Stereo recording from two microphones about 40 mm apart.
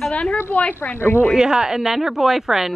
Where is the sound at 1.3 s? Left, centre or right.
Centre.